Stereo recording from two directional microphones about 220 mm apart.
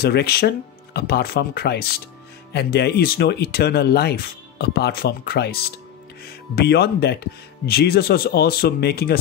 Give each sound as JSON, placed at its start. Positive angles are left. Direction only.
{"t": 0.0, "sound": "speech", "side_deg": 45}